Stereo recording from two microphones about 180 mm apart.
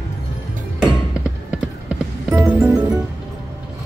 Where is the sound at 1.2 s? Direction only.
5° right (ahead or behind).